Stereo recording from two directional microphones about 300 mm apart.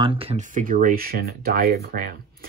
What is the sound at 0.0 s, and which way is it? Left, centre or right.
Speech, centre.